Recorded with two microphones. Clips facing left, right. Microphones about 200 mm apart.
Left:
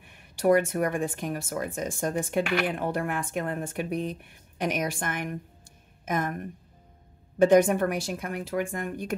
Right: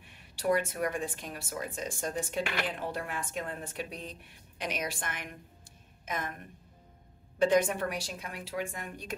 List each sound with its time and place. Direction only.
0.0 s a woman's voice: 50° left (ahead or behind)
7.3 s speech: 45° left (ahead or behind)